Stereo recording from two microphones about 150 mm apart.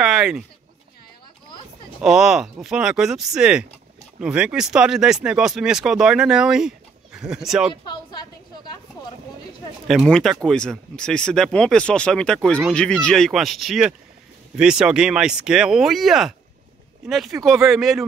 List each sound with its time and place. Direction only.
0.0 s a sound: 5° right (ahead or behind)
2.0 s speech: 5° right (ahead or behind)
7.7 s a woman's voice: 30° left (ahead or behind)
9.8 s speech: centre (ahead or behind)